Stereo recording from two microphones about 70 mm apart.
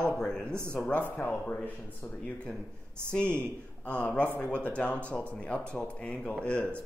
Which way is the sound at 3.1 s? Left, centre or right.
Centre.